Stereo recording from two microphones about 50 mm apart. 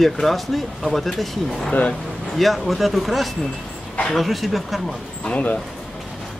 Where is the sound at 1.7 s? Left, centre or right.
Left.